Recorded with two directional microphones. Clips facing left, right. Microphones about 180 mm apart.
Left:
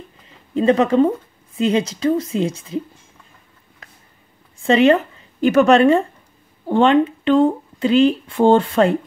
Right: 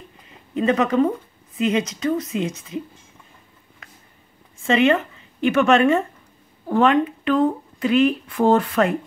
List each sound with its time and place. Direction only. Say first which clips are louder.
0.6 s a woman's voice: left 4 dB; 30° left (ahead or behind)
4.6 s a woman's voice: left 4 dB; 35° left (ahead or behind)